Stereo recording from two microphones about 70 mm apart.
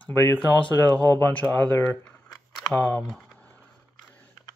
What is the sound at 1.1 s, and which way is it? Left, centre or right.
Speech, left.